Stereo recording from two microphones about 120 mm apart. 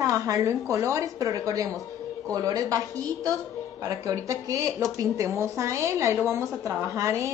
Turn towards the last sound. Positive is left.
turn(degrees=-25)  # may be behind; listen again after turning